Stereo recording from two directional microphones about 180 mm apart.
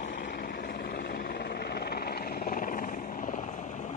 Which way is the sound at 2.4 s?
50° left (ahead or behind).